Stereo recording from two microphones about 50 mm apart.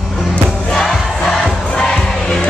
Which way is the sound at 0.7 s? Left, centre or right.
Centre.